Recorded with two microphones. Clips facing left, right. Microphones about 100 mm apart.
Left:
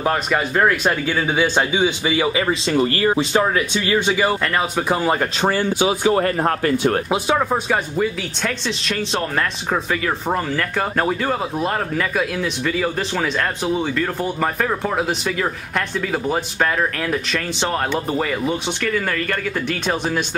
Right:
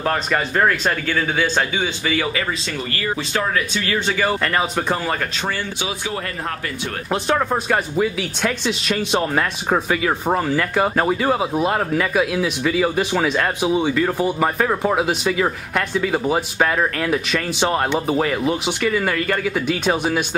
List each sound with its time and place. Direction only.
0.0 s speech: 5° left (ahead or behind)
2.7 s speech: 35° left (ahead or behind)
3.3 s speech: 20° left (ahead or behind)
4.3 s speech: centre (ahead or behind)
5.4 s speech: 35° left (ahead or behind)
7.1 s speech: 5° left (ahead or behind)